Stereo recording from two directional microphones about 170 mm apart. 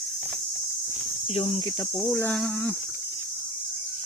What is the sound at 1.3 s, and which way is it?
Speech, 35° left (ahead or behind).